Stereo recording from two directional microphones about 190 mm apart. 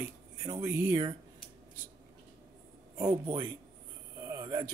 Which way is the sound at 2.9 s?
20° right (ahead or behind).